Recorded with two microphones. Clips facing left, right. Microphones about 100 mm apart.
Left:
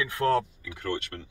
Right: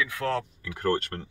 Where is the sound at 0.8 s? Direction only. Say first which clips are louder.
Right 6 dB; 45° right (ahead or behind).